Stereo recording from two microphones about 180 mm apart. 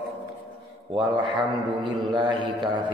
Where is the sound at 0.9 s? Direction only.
25° right (ahead or behind).